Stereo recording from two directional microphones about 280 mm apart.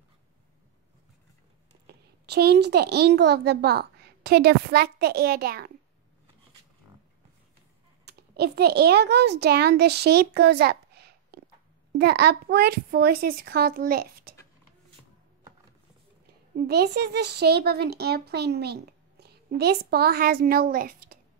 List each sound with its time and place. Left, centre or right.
1.9 s a child's voice: right
8.0 s a child's voice: right
16.5 s speech: right